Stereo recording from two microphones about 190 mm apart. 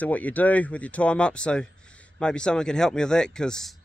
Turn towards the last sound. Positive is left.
turn(degrees=5)  # may be behind; listen again after turning